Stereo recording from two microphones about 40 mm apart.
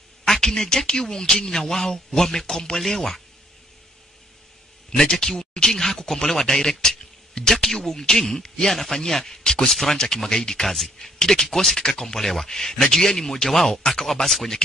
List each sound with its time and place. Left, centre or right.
0.2 s speech: centre
4.9 s speech: centre
9.4 s speech: centre
9.7 s speech: centre